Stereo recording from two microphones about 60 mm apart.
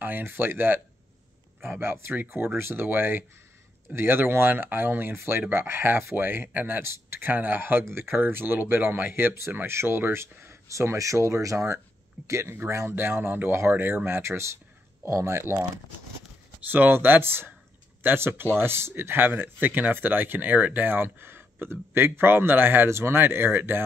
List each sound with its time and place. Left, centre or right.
0.0 s speech: right
6.8 s speech: right
12.9 s speech: right
16.6 s speech: right